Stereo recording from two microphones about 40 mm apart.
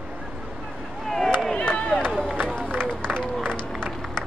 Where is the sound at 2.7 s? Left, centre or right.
Right.